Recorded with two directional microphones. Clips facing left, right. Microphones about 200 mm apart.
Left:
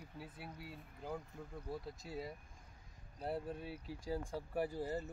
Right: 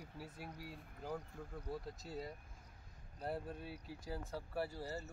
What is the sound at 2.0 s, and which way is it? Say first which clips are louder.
Speech: left 1 dB; 10° left (ahead or behind).